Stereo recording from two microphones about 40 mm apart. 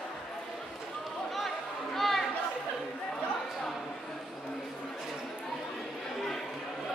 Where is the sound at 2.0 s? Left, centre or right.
Centre.